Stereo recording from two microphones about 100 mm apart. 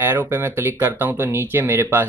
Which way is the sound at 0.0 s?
20° right (ahead or behind).